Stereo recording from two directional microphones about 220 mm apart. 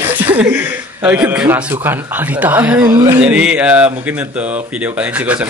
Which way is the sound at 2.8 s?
20° right (ahead or behind).